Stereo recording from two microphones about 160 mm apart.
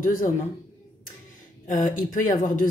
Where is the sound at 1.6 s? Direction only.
55° left (ahead or behind).